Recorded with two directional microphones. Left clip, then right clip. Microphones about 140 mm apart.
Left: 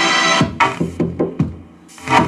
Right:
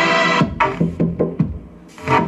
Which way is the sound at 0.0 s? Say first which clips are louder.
Left 1 dB; 25° left (ahead or behind).